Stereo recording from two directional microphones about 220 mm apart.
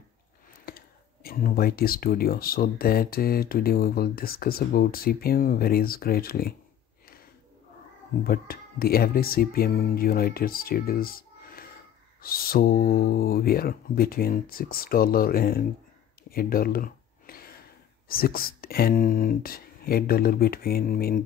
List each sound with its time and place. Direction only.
0.7 s speech: 40° left (ahead or behind)
8.2 s speech: 45° left (ahead or behind)
16.3 s a sound: 40° left (ahead or behind)
18.0 s speech: 40° left (ahead or behind)